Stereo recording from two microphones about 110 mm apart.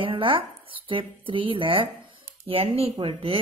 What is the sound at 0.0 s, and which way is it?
Speech, 50° right (ahead or behind).